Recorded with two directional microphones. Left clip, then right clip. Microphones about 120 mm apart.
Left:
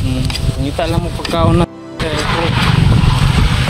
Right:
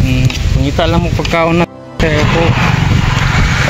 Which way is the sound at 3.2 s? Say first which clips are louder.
Right 4 dB; 5° left (ahead or behind).